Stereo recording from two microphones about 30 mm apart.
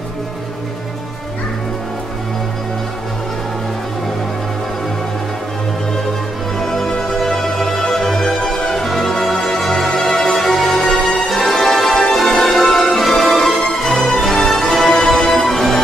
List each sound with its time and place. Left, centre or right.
6.6 s music: centre
13.6 s music: centre